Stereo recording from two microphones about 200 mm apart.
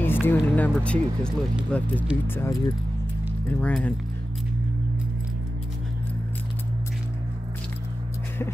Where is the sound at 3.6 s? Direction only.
5° left (ahead or behind).